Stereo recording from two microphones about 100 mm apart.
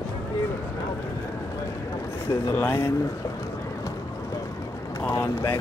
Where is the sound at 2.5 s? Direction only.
25° left (ahead or behind).